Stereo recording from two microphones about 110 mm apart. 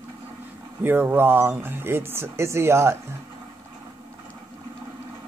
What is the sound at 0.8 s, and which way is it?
Speech, 20° right (ahead or behind).